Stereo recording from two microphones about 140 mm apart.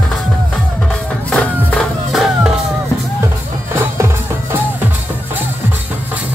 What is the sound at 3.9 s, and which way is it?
Music, 20° right (ahead or behind).